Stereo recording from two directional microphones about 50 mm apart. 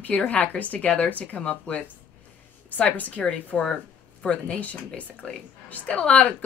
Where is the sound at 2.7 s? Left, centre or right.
Left.